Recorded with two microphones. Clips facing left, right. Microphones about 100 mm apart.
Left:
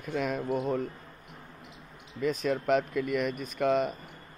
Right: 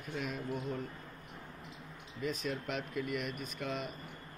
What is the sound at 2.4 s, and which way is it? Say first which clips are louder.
Speech: left 11 dB; 60° left (ahead or behind).